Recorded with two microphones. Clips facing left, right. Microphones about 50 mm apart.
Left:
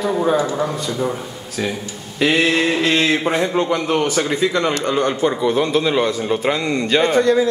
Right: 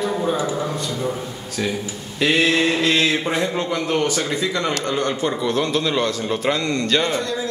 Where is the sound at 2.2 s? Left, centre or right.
Centre.